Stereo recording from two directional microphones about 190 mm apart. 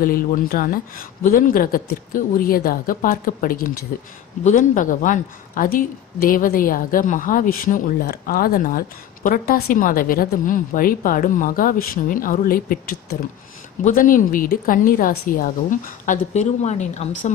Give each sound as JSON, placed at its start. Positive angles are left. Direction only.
{"t": 0.0, "sound": "a woman's voice", "side_deg": 50}